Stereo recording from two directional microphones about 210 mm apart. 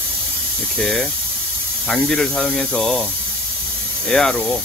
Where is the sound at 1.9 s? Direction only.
5° left (ahead or behind).